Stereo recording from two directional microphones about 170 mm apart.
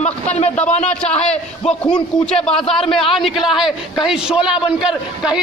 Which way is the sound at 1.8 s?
5° left (ahead or behind).